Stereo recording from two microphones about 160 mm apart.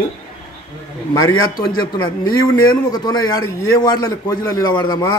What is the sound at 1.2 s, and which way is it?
A man's voice, 25° left (ahead or behind).